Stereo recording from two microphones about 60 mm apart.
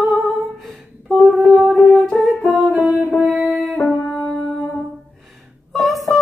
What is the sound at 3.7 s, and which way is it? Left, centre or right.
Music, left.